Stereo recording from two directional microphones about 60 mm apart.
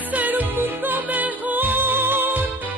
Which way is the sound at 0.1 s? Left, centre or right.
Right.